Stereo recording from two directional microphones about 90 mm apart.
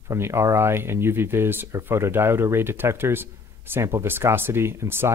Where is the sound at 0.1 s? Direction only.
30° right (ahead or behind).